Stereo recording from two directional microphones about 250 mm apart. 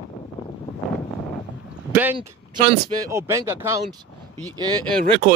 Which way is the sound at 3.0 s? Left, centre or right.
Centre.